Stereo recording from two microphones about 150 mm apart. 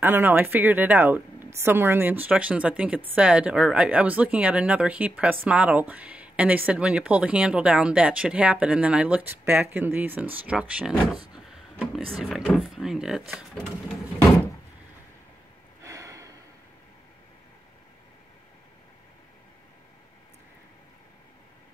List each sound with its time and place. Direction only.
0.0 s speech: 15° right (ahead or behind)
12.2 s speech: centre (ahead or behind)
15.8 s a sound: 20° right (ahead or behind)